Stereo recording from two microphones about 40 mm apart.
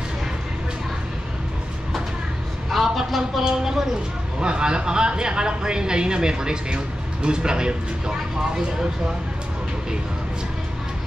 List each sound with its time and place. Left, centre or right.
2.7 s a sound: centre
3.4 s speech: centre
4.4 s speech: right